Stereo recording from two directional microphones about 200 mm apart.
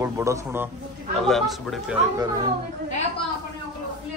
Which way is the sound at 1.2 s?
Centre (ahead or behind).